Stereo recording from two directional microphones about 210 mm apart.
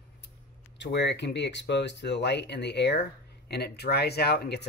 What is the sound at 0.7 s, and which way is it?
Speech, 55° left (ahead or behind).